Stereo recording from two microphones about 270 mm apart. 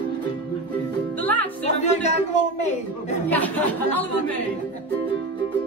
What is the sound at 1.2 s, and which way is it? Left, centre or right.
Music, centre.